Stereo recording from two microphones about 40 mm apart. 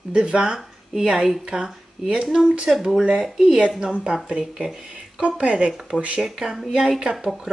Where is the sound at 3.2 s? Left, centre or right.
Centre.